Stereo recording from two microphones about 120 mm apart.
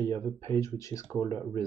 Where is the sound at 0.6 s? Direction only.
25° left (ahead or behind).